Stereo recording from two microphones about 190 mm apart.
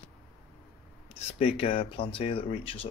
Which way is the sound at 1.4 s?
30° left (ahead or behind).